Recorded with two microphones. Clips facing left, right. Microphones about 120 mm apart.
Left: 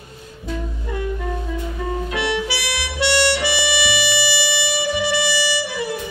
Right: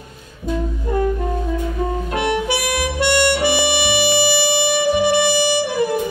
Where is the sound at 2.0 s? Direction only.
50° right (ahead or behind).